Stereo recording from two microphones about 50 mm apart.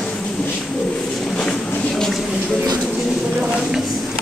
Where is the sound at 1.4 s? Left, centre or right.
Centre.